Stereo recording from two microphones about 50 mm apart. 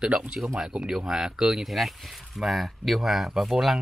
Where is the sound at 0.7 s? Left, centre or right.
Centre.